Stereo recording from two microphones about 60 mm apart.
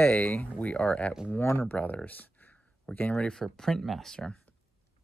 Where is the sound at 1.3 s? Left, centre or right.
Left.